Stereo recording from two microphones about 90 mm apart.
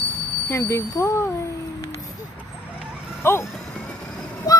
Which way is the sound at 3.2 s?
25° left (ahead or behind).